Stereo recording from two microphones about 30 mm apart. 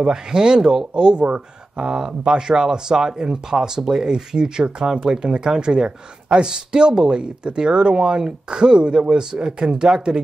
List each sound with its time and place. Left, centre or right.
0.0 s speech: right
0.6 s speech: centre
0.9 s speech: right
5.9 s speech: right
6.4 s speech: right